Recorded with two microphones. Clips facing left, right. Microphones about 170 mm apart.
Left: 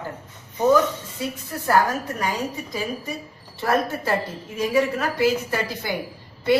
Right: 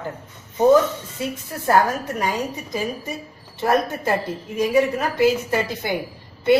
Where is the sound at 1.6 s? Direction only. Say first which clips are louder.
Right 2 dB; 20° right (ahead or behind).